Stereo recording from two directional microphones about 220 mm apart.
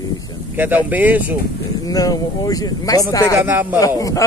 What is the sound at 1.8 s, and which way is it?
Speech, 15° left (ahead or behind).